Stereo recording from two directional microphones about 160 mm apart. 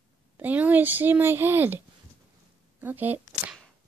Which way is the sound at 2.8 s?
10° right (ahead or behind).